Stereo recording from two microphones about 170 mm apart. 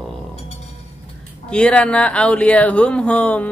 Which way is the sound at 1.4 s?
5° left (ahead or behind).